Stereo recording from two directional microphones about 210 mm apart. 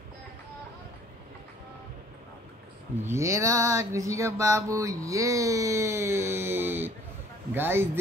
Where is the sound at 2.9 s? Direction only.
10° right (ahead or behind).